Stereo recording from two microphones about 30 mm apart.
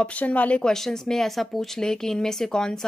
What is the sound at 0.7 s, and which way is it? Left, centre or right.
Speech, centre.